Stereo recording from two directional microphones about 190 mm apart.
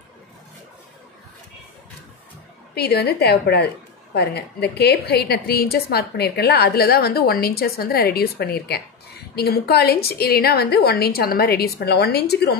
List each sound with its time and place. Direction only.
2.7 s a woman's voice: 55° left (ahead or behind)